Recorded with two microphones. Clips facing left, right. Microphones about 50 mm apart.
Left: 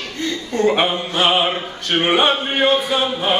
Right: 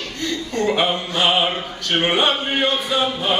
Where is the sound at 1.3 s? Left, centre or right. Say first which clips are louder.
Left 1 dB; centre.